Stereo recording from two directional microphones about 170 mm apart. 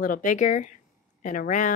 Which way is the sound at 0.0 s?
50° left (ahead or behind).